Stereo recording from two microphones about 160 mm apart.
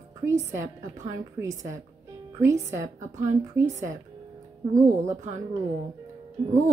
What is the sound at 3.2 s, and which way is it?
Speech, 15° right (ahead or behind).